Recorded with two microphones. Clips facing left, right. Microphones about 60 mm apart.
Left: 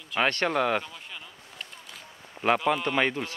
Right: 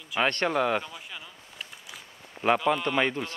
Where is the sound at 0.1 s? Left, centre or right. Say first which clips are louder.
Even; centre.